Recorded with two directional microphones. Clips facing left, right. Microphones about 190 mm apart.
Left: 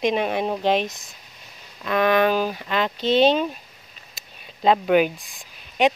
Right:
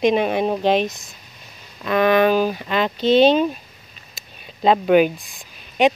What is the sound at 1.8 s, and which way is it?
Speech, 20° right (ahead or behind).